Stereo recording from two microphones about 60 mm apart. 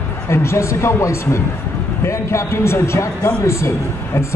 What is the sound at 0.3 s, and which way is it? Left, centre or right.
Speech, left.